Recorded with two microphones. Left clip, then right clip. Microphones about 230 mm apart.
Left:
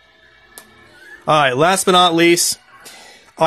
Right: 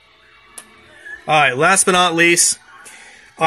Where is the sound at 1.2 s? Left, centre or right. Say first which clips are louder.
Even; left.